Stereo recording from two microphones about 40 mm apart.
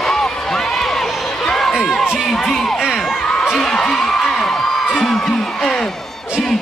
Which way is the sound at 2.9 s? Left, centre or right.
Centre.